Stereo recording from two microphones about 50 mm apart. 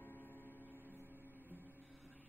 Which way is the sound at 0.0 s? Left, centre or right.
Left.